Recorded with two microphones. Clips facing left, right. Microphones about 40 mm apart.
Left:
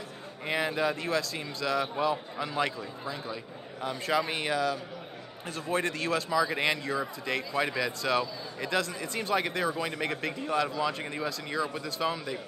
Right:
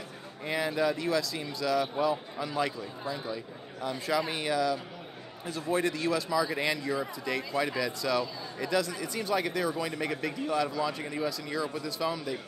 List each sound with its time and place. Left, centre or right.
0.5 s a man's voice: left